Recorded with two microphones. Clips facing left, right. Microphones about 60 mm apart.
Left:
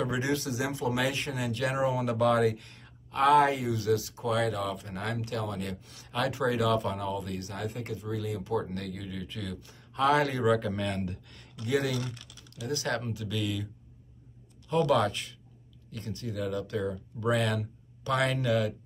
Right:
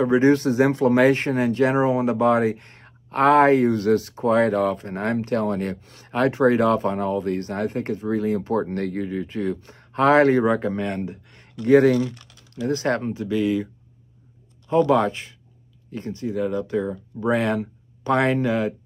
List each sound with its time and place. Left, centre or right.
0.0 s speech: right
11.6 s speech: right
14.7 s speech: right